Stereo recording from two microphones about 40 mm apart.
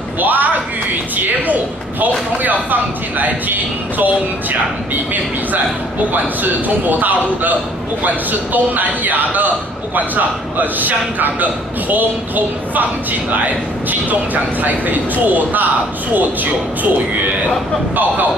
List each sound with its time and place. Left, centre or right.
0.2 s speech: right
6.4 s speech: right
14.3 s speech: right